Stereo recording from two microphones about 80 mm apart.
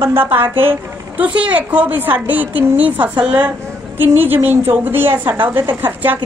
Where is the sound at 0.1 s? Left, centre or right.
Right.